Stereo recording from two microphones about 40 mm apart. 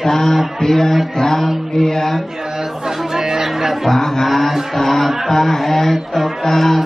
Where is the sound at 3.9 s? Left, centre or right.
Centre.